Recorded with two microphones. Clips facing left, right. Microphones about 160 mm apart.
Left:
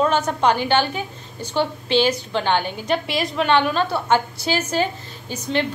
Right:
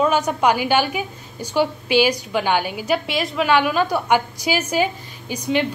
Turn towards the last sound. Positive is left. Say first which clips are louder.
# right 2 dB
turn(degrees=-10)  # may be behind; listen again after turning